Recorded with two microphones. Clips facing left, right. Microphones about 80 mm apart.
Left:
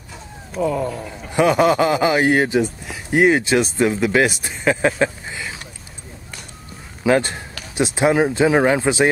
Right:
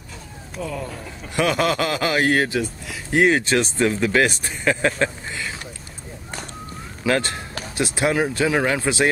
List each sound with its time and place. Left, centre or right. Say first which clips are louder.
0.6 s speech: left 9 dB; left
1.3 s speech: left 5 dB; centre
7.1 s speech: left 4 dB; centre